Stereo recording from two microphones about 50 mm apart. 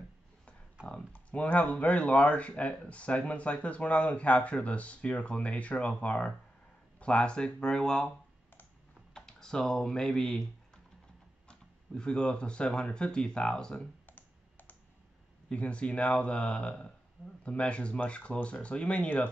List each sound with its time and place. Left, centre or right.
0.8 s speech: left
9.1 s speech: centre
14.0 s computer keyboard: left
15.5 s speech: left